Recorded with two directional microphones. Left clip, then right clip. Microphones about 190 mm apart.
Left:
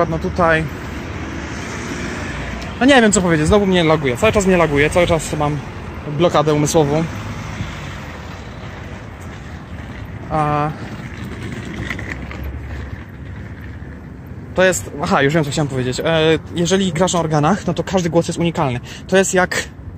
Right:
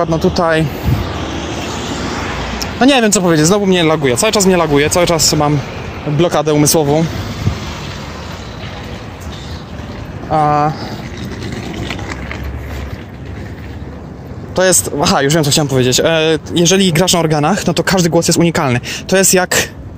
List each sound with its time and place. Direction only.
0.0 s speech: 40° right (ahead or behind)
2.6 s speech: 35° right (ahead or behind)
4.2 s speech: 20° right (ahead or behind)
5.0 s speech: 30° right (ahead or behind)
10.3 s speech: 20° right (ahead or behind)
11.8 s vehicle: 45° left (ahead or behind)
14.5 s speech: 40° right (ahead or behind)